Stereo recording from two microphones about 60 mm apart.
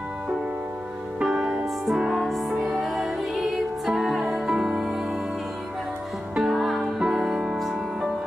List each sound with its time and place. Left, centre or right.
1.2 s music: centre
6.3 s music: centre